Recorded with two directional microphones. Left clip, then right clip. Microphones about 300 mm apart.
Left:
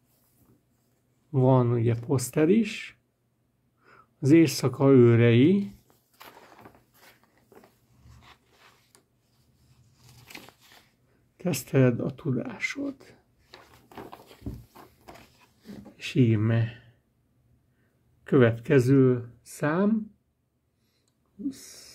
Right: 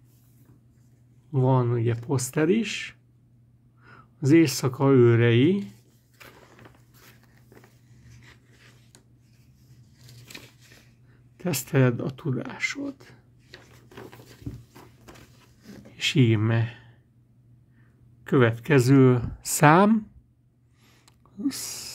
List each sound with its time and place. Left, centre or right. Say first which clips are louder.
1.3 s speech: left 1 dB; centre
11.3 s speech: even; centre
16.0 s speech: right 3 dB; centre
18.2 s speech: even; centre